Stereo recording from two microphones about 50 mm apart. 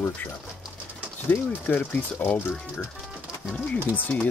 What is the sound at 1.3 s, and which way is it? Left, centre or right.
Speech, left.